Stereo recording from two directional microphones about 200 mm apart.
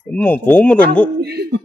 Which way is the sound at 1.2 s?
55° right (ahead or behind).